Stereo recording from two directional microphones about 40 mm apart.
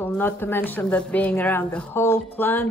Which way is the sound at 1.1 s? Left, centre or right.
Left.